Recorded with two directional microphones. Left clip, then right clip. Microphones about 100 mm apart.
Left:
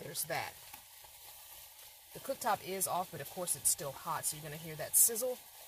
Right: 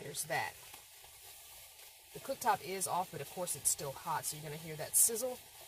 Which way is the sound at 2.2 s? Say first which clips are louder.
Right 1 dB; 5° right (ahead or behind).